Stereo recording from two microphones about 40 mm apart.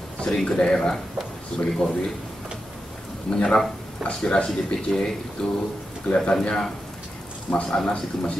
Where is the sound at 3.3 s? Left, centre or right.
Centre.